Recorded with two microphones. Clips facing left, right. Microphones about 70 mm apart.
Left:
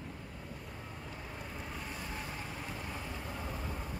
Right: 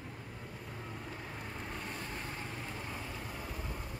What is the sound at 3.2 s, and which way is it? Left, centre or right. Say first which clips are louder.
Vehicle: left 2 dB; centre.